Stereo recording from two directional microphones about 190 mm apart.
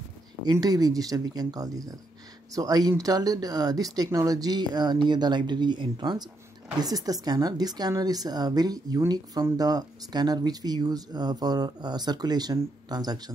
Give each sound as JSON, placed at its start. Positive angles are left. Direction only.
{"t": 0.5, "sound": "a woman's voice", "side_deg": -20}